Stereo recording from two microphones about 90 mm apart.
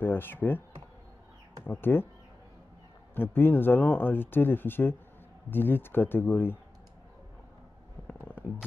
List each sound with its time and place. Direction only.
0.0 s speech: 25° left (ahead or behind)
1.6 s speech: 25° left (ahead or behind)
3.2 s speech: 25° left (ahead or behind)
8.1 s a sound: 25° left (ahead or behind)